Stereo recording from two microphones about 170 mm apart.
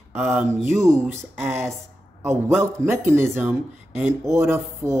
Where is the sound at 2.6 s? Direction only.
15° right (ahead or behind).